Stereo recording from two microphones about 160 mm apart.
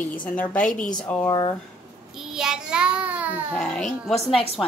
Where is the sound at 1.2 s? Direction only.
25° left (ahead or behind).